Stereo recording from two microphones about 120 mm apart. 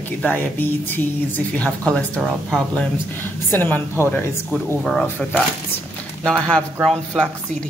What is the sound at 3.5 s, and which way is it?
Speech, 15° left (ahead or behind).